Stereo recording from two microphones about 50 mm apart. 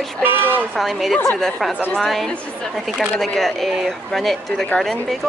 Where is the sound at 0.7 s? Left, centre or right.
Centre.